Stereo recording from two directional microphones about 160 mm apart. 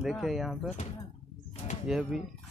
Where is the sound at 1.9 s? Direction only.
Centre (ahead or behind).